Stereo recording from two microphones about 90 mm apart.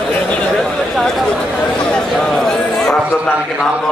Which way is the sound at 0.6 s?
5° left (ahead or behind).